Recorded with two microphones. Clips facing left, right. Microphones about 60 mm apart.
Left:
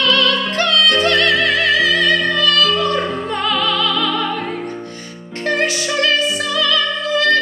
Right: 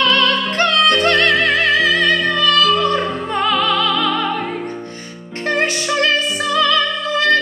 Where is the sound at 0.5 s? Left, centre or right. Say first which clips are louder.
Right 1 dB; right.